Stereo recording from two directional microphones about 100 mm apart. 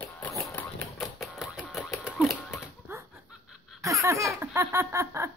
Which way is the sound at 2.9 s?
25° right (ahead or behind).